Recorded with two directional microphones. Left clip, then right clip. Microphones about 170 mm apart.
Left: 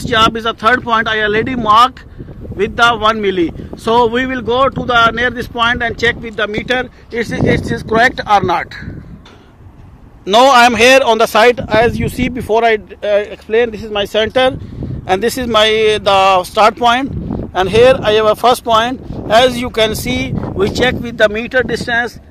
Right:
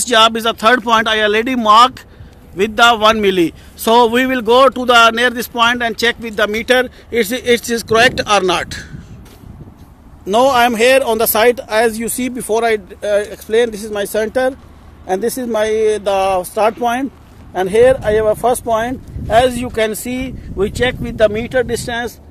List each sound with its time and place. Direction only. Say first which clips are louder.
0.0 s a man's voice: right 1 dB; 35° right (ahead or behind)
10.2 s speech: left 4 dB; 10° right (ahead or behind)